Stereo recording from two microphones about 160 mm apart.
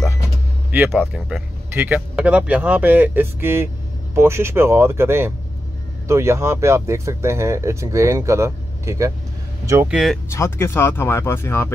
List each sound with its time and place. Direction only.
0.7 s a man's voice: 10° right (ahead or behind)
9.8 s speech: 5° right (ahead or behind)
10.3 s speech: 15° left (ahead or behind)